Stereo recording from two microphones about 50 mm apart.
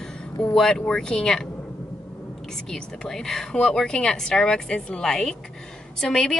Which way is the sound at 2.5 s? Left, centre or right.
Centre.